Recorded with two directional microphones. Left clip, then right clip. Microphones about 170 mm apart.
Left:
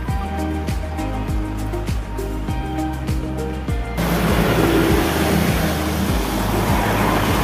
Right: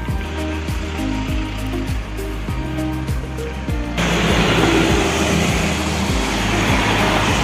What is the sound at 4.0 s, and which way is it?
Music, 45° right (ahead or behind).